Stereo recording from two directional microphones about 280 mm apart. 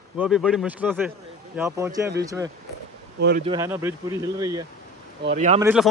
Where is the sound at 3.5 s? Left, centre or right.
Centre.